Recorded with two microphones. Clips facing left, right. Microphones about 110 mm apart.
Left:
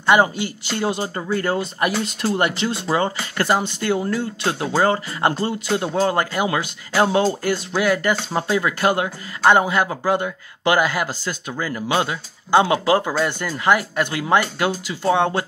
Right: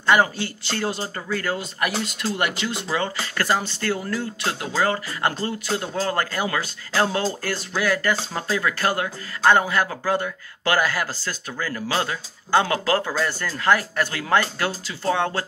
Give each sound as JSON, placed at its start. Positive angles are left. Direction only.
{"t": 0.0, "sound": "speech", "side_deg": 20}